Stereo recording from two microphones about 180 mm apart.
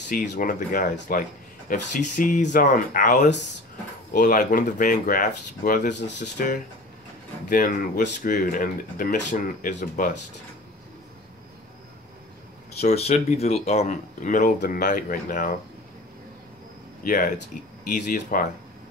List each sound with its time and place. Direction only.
0.1 s speech: 50° left (ahead or behind)
12.8 s speech: 35° left (ahead or behind)
17.0 s speech: 50° left (ahead or behind)